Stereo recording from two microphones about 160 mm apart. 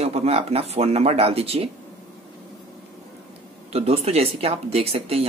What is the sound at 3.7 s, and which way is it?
Speech, 40° right (ahead or behind).